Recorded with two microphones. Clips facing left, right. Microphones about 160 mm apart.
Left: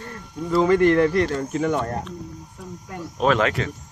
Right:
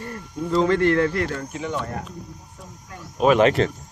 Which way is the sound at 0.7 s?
20° left (ahead or behind).